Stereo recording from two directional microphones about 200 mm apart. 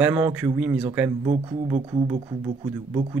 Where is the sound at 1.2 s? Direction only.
30° right (ahead or behind).